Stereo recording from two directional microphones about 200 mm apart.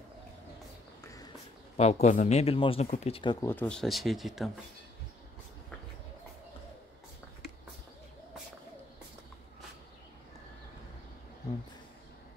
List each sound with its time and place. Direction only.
1.8 s speech: 35° left (ahead or behind)
3.4 s speech: 5° left (ahead or behind)